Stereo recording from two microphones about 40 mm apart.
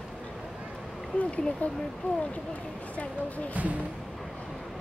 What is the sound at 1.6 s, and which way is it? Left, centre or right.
Speech, left.